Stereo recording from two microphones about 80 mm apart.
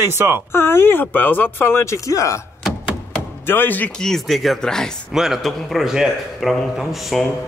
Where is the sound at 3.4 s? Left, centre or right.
Left.